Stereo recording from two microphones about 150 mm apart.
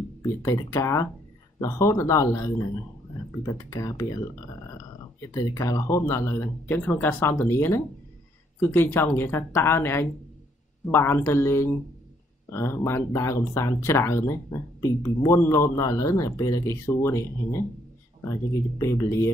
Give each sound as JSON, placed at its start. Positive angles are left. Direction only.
{"t": 0.2, "sound": "speech", "side_deg": 20}
{"t": 5.3, "sound": "speech", "side_deg": 20}